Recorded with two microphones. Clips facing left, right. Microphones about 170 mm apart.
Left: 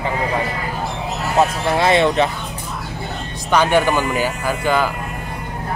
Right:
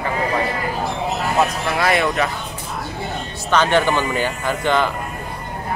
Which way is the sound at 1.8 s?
25° left (ahead or behind).